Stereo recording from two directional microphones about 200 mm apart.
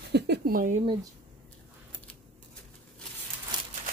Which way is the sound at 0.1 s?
50° right (ahead or behind).